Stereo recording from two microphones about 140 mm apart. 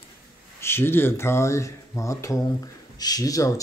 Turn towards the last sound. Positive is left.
turn(degrees=25)  # may be behind; listen again after turning